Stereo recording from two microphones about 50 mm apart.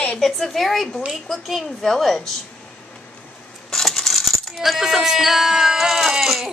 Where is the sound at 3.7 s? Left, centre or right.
Centre.